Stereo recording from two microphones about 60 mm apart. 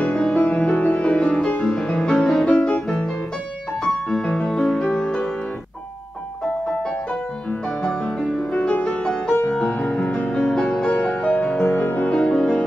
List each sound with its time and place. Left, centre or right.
0.0 s music: centre
0.4 s music: left
3.8 s piano: centre
4.8 s music: centre
8.3 s music: centre
11.7 s music: left
12.1 s music: centre